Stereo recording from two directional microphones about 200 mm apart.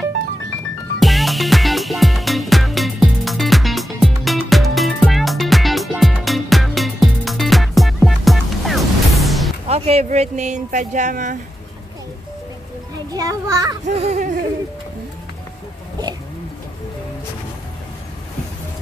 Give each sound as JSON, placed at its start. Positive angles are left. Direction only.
{"t": 0.9, "sound": "music", "side_deg": 0}
{"t": 9.7, "sound": "speech", "side_deg": -30}
{"t": 13.1, "sound": "a child's voice", "side_deg": -15}
{"t": 13.8, "sound": "music", "side_deg": -35}